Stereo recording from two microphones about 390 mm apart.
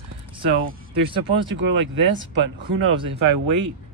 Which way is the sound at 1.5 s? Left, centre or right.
Right.